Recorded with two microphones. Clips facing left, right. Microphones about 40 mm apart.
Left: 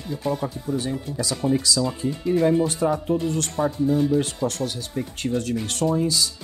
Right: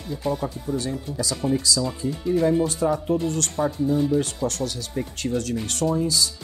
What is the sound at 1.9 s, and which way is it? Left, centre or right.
Speech, left.